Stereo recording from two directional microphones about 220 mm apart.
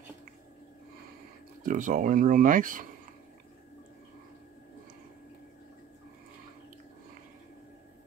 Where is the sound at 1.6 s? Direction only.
35° right (ahead or behind).